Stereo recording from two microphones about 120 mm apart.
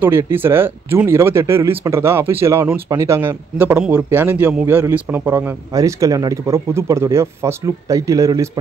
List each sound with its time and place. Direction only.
0.3 s speech: 20° right (ahead or behind)
5.7 s speech: 25° right (ahead or behind)